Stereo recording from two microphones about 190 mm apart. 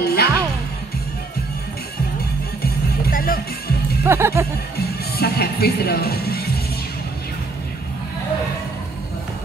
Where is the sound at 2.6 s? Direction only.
50° left (ahead or behind).